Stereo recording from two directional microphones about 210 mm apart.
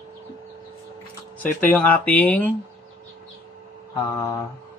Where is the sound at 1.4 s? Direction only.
10° left (ahead or behind).